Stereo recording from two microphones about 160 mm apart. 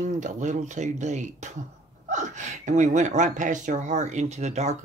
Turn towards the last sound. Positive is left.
turn(degrees=-45)  # may be behind; listen again after turning